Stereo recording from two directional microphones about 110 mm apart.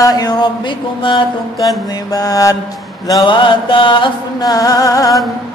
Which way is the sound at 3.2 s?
50° left (ahead or behind).